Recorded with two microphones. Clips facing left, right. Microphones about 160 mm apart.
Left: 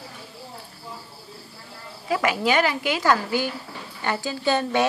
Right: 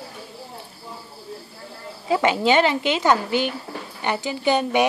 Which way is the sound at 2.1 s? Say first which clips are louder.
Right 4 dB; 25° right (ahead or behind).